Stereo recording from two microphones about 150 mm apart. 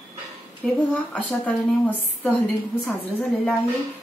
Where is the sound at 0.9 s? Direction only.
10° left (ahead or behind).